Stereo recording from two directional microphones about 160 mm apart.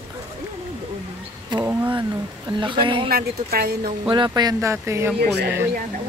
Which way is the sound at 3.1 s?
75° right (ahead or behind).